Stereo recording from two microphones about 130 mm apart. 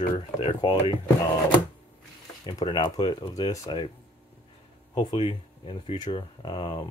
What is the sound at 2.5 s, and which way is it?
Speech, 35° left (ahead or behind).